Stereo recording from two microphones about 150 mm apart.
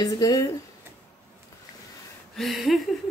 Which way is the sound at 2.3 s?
Centre (ahead or behind).